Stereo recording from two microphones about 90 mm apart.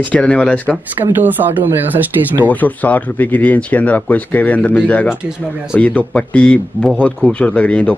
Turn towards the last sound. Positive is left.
turn(degrees=15)  # may be behind; listen again after turning